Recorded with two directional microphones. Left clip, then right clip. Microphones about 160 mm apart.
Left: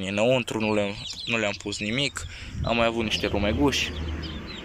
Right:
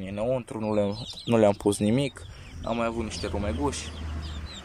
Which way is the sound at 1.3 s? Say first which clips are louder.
Right 6 dB; 40° right (ahead or behind).